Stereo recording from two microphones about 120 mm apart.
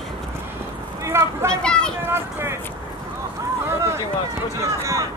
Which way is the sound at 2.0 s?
20° right (ahead or behind).